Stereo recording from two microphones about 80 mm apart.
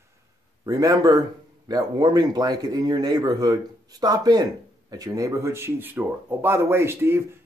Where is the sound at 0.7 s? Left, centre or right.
Right.